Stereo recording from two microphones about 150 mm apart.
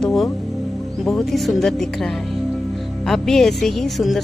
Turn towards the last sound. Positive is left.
turn(degrees=0)  # may be behind; listen again after turning